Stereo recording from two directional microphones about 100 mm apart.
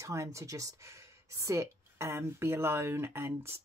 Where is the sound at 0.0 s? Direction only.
30° right (ahead or behind).